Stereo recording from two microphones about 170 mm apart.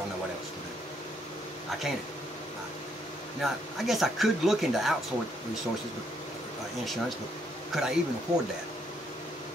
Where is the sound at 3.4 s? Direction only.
Centre (ahead or behind).